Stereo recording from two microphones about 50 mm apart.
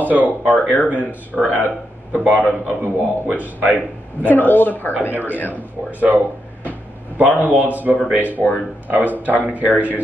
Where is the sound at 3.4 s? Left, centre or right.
Right.